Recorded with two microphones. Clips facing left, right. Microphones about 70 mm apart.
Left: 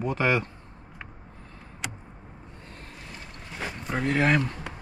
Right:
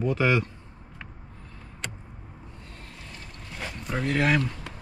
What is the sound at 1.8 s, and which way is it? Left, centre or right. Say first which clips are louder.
Vehicle: left 1 dB; centre.